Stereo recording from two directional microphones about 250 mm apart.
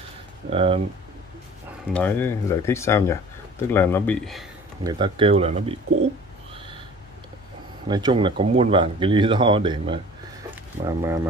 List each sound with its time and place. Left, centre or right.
0.5 s speech: right
2.0 s speech: centre
4.8 s speech: centre
6.5 s owl: centre
7.9 s speech: centre
10.5 s a sound: centre